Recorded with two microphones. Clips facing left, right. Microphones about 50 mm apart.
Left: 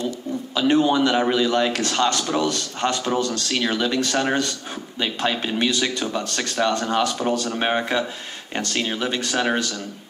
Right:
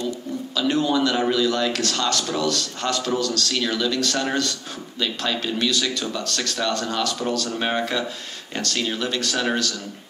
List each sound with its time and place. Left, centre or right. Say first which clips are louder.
0.6 s a man's voice: left 3 dB; left